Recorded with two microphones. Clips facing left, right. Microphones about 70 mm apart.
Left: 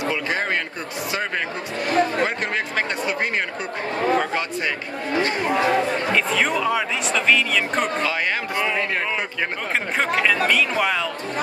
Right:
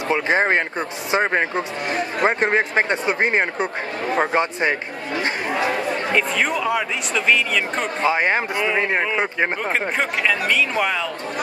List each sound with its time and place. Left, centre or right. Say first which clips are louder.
0.1 s a man's voice: right 10 dB; right
6.1 s speech: right 1 dB; centre
8.0 s a man's voice: right 4 dB; right
9.7 s speech: right 1 dB; centre